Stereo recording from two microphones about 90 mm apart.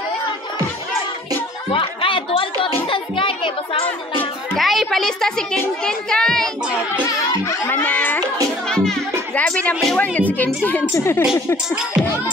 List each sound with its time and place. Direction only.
1.7 s music: 75° left (ahead or behind)
4.6 s a child's voice: centre (ahead or behind)
7.6 s speech: 20° left (ahead or behind)
8.6 s music: 10° left (ahead or behind)
9.5 s speech: 15° left (ahead or behind)